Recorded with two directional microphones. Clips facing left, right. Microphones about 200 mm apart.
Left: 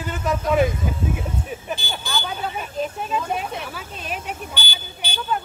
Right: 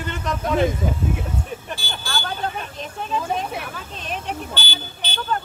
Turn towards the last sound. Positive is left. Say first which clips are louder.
# even
turn(degrees=10)  # may be behind; listen again after turning